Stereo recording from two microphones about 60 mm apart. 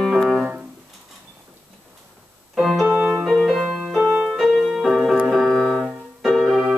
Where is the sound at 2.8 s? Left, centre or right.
Right.